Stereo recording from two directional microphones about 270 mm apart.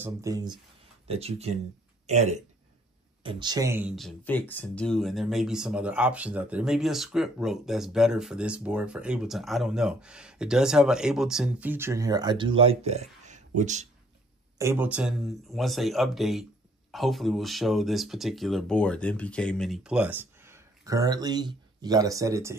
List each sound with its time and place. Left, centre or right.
0.0 s speech: centre
14.6 s speech: centre